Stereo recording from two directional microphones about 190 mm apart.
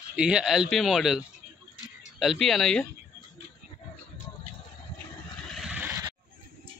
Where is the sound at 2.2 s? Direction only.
Centre (ahead or behind).